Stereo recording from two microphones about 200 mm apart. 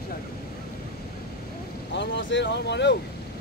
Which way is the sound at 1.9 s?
60° left (ahead or behind).